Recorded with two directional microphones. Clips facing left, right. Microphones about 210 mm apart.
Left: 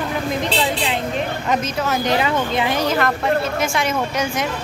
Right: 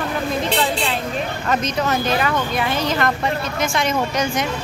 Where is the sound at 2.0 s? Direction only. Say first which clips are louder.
Left 1 dB; 20° left (ahead or behind).